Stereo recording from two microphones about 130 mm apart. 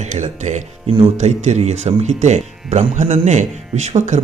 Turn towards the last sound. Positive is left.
turn(degrees=-65)  # may be behind; listen again after turning